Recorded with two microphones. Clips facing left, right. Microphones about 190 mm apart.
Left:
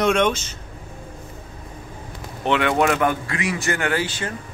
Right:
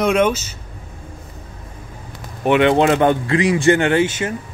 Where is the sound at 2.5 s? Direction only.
25° right (ahead or behind).